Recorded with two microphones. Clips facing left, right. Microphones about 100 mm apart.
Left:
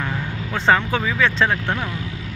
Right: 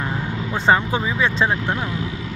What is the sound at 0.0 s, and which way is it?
Speech, 15° right (ahead or behind).